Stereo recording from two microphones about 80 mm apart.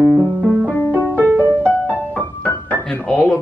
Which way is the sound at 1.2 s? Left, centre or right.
Left.